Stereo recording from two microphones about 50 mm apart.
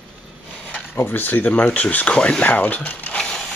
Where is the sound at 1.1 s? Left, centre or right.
Left.